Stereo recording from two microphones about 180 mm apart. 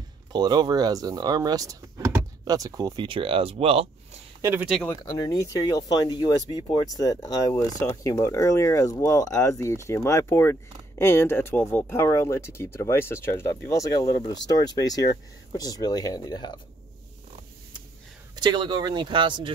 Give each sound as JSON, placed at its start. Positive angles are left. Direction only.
{"t": 0.3, "sound": "speech", "side_deg": -25}
{"t": 4.4, "sound": "speech", "side_deg": -10}
{"t": 5.1, "sound": "speech", "side_deg": 20}
{"t": 18.3, "sound": "speech", "side_deg": -25}